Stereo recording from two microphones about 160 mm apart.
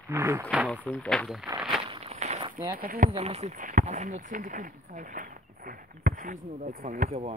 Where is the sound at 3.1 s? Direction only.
40° right (ahead or behind); by 6.4 s 60° right (ahead or behind).